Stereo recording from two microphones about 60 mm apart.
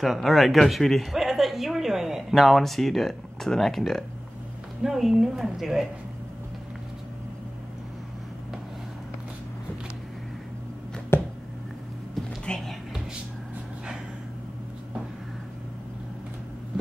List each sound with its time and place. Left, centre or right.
0.0 s speech: centre
11.1 s a sound: left
12.4 s music: centre